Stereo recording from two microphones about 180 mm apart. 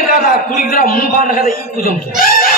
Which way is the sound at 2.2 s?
55° left (ahead or behind).